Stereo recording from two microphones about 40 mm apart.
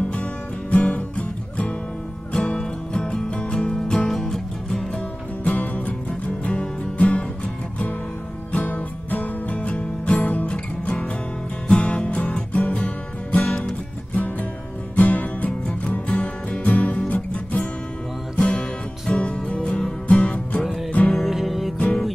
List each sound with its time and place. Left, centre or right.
0.0 s music: left
2.3 s music: left
5.4 s music: left
6.4 s music: left
18.3 s music: left
21.1 s music: centre